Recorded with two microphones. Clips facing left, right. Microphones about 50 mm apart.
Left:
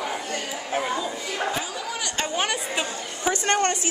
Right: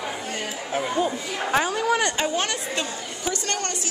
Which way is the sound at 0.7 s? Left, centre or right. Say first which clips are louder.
Left 1 dB; centre.